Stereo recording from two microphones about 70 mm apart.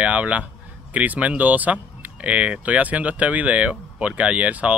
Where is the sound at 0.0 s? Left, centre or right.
Centre.